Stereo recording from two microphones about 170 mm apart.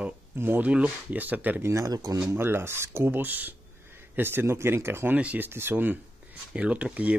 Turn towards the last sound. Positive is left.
turn(degrees=-5)  # may be behind; listen again after turning